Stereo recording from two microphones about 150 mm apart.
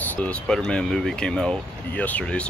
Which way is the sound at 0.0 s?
10° left (ahead or behind).